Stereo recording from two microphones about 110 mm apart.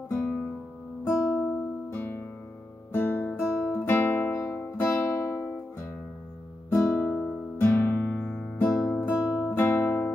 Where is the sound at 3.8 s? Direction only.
20° left (ahead or behind).